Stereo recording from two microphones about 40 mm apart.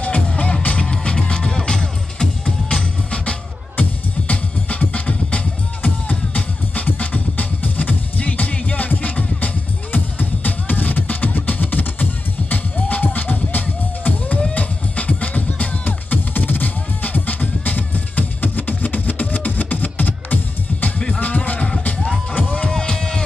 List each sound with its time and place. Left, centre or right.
0.0 s music: left
22.7 s music: centre